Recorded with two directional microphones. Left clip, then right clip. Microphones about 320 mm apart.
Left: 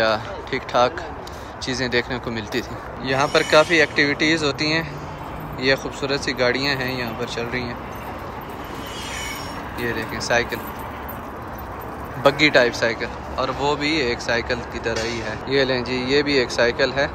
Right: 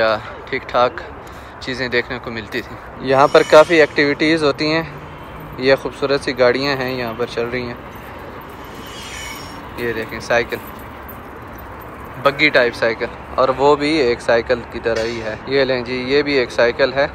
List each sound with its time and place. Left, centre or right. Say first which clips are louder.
0.0 s speech: right 3 dB; centre
9.8 s speech: right 3 dB; centre
12.2 s speech: right 2 dB; centre